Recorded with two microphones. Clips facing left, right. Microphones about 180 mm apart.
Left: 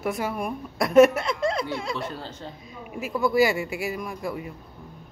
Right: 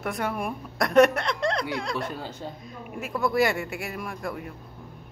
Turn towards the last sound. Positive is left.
turn(degrees=5)  # may be behind; listen again after turning